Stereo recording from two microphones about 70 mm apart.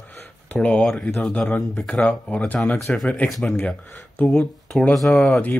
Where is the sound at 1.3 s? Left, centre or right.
Centre.